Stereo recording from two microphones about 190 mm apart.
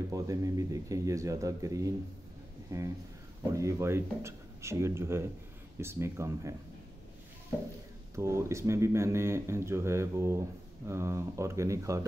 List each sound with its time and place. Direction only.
0.1 s speech: 20° right (ahead or behind)
8.2 s speech: 15° right (ahead or behind)